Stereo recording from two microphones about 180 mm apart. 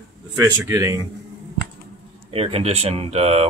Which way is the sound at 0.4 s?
15° right (ahead or behind).